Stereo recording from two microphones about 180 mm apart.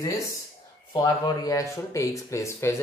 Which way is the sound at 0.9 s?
20° left (ahead or behind).